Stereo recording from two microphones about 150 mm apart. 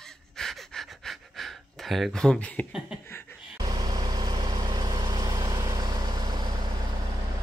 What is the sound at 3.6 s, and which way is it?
Vehicle, 25° right (ahead or behind).